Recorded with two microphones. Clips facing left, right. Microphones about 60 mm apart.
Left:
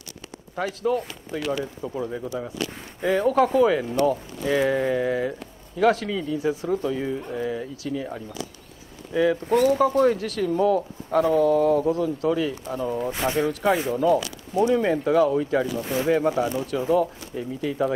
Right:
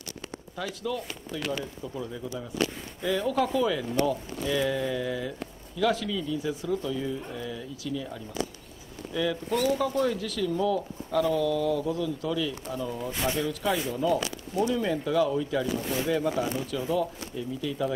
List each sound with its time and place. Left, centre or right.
0.6 s speech: left
7.2 s speech: left
7.4 s speech: left